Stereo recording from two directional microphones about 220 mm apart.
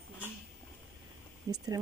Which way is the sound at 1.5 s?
15° right (ahead or behind).